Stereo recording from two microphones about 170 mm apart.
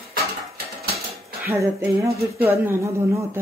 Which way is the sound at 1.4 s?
15° right (ahead or behind).